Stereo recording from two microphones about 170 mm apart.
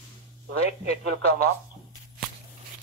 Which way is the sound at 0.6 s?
40° left (ahead or behind).